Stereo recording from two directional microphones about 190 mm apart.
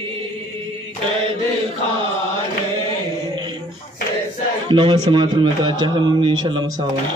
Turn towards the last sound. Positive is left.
turn(degrees=-25)  # may be behind; listen again after turning